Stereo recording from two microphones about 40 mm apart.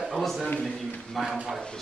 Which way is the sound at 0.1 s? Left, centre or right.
Centre.